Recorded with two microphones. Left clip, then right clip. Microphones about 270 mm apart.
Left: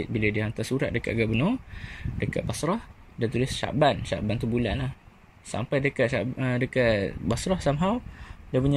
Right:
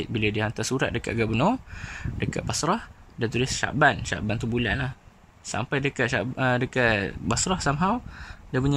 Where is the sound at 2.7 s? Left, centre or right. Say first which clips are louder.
Right 3 dB; centre.